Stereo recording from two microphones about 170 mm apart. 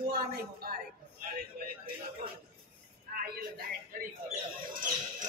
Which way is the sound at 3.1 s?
55° right (ahead or behind).